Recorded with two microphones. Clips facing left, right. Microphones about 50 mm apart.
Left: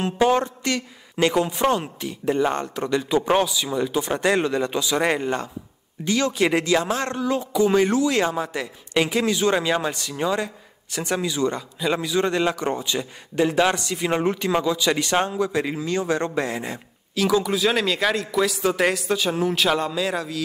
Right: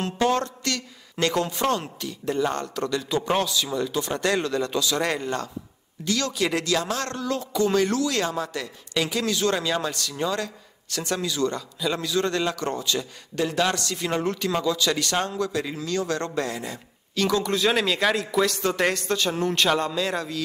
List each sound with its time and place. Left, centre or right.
0.0 s speech: centre
17.1 s a man's voice: centre